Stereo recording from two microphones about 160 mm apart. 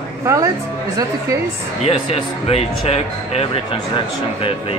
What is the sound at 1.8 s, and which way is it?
Speech, 40° left (ahead or behind).